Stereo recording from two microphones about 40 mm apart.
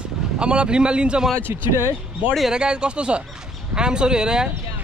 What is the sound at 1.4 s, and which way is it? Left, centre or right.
Speech, right.